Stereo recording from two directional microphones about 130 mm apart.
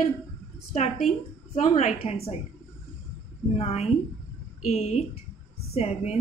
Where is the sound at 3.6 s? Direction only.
50° left (ahead or behind).